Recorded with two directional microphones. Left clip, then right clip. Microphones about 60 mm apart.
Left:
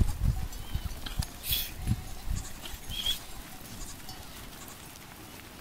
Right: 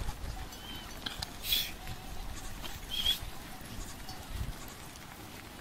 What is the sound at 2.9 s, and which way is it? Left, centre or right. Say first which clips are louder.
Rodents: right 1 dB; right.